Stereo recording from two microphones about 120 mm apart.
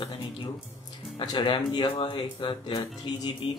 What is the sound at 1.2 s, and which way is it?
Speech, 40° left (ahead or behind).